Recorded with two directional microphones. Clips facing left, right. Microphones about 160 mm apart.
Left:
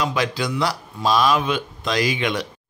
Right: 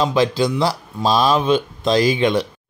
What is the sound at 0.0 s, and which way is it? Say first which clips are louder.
Speech: right 6 dB; 30° right (ahead or behind).